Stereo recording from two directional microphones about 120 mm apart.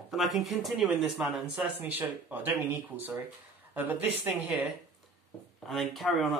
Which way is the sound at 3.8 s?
15° right (ahead or behind).